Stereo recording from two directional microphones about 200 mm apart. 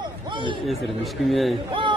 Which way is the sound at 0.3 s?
25° right (ahead or behind).